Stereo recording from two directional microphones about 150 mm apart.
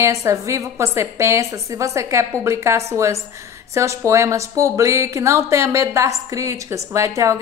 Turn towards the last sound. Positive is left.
turn(degrees=-20)  # may be behind; listen again after turning